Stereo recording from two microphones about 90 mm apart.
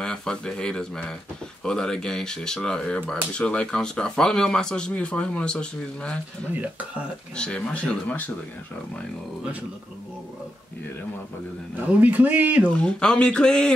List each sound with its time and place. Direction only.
0.0 s speech: 5° left (ahead or behind)
6.5 s a man's voice: 15° right (ahead or behind)
7.3 s speech: 10° left (ahead or behind)
12.0 s a man's voice: 20° right (ahead or behind)
12.8 s speech: 10° left (ahead or behind)